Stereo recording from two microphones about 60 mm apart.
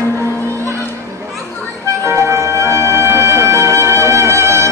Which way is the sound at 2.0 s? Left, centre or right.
Right.